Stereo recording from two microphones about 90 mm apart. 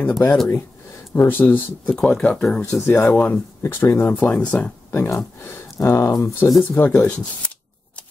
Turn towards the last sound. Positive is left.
turn(degrees=15)  # may be behind; listen again after turning